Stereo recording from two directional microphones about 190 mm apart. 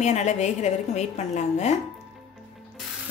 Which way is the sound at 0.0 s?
35° left (ahead or behind).